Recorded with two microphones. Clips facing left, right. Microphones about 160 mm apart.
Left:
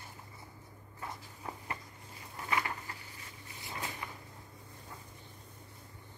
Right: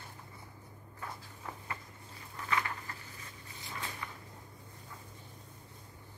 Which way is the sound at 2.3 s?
25° left (ahead or behind).